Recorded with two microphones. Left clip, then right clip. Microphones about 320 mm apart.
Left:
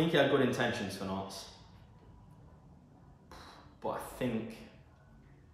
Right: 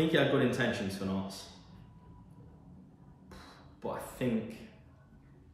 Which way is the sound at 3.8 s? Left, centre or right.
Centre.